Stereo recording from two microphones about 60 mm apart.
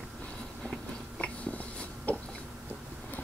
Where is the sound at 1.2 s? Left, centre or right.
Left.